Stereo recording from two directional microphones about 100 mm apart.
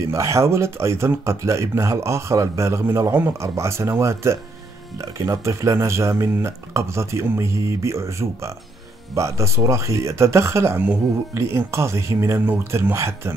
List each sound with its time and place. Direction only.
0.0 s speech: 30° right (ahead or behind)